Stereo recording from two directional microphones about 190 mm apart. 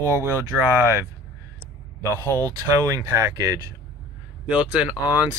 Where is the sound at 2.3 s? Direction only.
15° right (ahead or behind).